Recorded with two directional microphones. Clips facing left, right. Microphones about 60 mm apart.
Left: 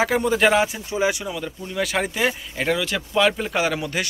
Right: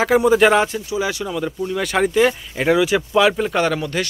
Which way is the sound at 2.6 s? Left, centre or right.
Centre.